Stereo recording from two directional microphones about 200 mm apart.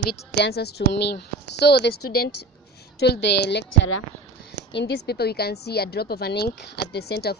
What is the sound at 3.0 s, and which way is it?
A woman's voice, 55° left (ahead or behind).